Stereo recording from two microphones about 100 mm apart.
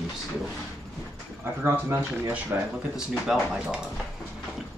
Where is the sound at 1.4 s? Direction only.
20° right (ahead or behind).